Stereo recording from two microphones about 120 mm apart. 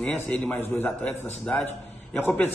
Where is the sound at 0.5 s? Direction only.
20° left (ahead or behind).